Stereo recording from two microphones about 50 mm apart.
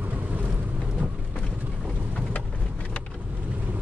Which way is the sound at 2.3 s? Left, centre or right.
Left.